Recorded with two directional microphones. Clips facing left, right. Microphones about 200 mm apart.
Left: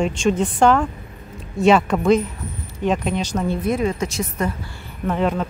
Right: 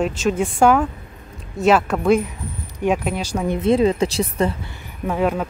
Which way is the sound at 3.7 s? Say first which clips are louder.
Right 9 dB; 30° right (ahead or behind).